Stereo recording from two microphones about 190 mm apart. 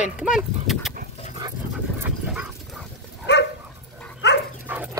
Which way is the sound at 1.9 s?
10° right (ahead or behind).